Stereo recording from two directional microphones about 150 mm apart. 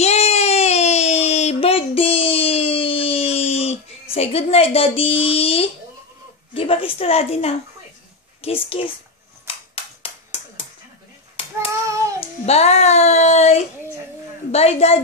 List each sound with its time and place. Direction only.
0.0 s a sound: 45° left (ahead or behind)
7.0 s speech: 40° left (ahead or behind)
8.6 s speech: 40° left (ahead or behind)
9.5 s a sound: 35° left (ahead or behind)
11.4 s child singing: 40° left (ahead or behind)
11.8 s child singing: 20° right (ahead or behind)
12.4 s speech: 45° left (ahead or behind)